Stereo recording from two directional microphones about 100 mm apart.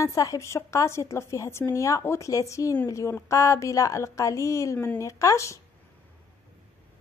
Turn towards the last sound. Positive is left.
turn(degrees=30)  # may be behind; listen again after turning